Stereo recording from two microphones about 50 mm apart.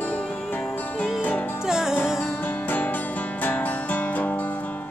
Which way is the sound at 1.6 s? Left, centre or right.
Centre.